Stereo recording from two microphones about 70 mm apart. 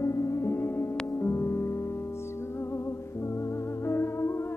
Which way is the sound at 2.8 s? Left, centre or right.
Left.